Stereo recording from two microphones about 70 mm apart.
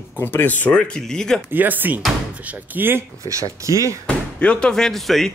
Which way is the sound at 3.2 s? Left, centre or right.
Right.